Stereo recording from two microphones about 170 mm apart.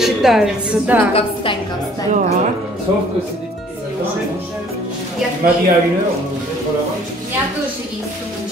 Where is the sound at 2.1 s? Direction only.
45° right (ahead or behind).